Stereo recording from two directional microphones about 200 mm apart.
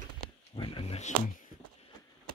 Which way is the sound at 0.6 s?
25° left (ahead or behind).